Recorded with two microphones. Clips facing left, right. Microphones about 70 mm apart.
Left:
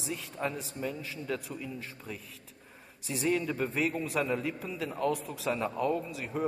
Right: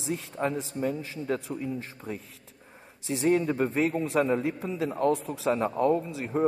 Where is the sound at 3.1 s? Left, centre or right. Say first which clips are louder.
Right 6 dB; right.